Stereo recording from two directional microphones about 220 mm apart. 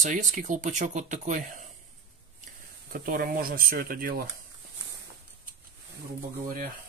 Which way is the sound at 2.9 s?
40° right (ahead or behind).